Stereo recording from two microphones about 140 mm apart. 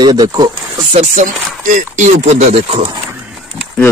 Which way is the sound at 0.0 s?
30° right (ahead or behind).